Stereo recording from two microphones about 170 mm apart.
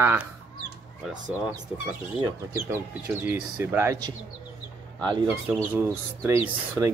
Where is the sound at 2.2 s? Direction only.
20° right (ahead or behind).